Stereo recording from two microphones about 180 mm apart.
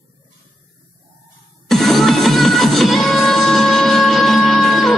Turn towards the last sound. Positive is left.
turn(degrees=0)  # may be behind; listen again after turning